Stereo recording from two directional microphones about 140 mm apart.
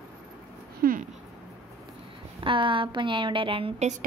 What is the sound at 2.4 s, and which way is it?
A woman's voice, 35° right (ahead or behind).